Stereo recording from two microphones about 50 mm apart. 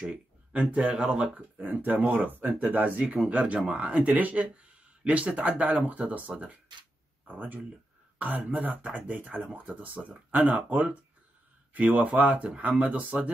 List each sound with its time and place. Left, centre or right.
0.1 s a sound: right
0.7 s speech: centre; by 2.5 s right
2.7 s speech: right